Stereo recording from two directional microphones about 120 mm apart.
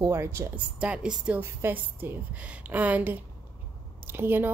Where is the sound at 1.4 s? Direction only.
20° right (ahead or behind).